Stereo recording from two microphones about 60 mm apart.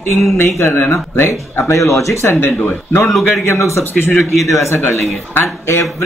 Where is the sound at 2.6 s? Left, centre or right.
Left.